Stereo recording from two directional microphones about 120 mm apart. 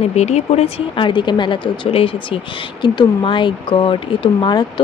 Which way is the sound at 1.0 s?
40° left (ahead or behind).